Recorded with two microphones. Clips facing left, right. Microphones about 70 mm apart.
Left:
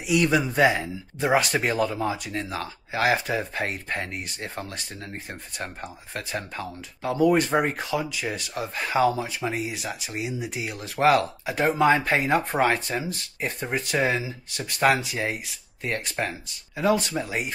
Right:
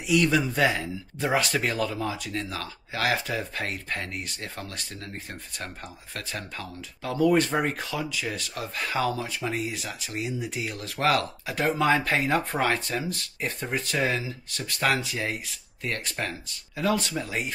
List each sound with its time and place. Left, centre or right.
0.0 s speech: centre